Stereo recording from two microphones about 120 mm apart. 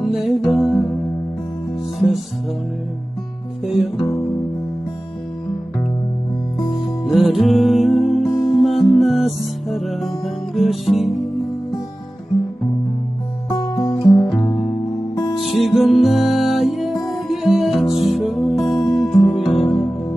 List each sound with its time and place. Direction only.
0.0 s music: centre (ahead or behind)
3.6 s music: centre (ahead or behind)
3.9 s music: 50° left (ahead or behind)
7.1 s music: centre (ahead or behind)
13.7 s guitar: 30° left (ahead or behind)
14.0 s music: centre (ahead or behind)